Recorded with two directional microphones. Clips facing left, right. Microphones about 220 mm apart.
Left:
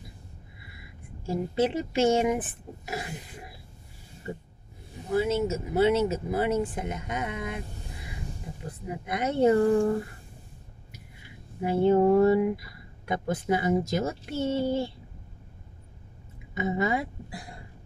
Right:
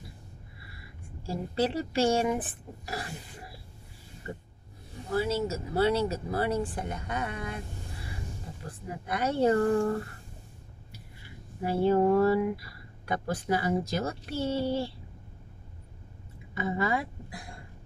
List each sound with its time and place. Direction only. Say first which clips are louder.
0.7 s speech: left 2 dB; 20° left (ahead or behind)
5.1 s a woman's voice: left 3 dB; 20° left (ahead or behind)
11.6 s speech: left 3 dB; 20° left (ahead or behind)
16.5 s speech: left 2 dB; 20° left (ahead or behind)